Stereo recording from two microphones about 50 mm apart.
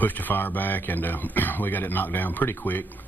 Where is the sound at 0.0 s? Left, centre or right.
Left.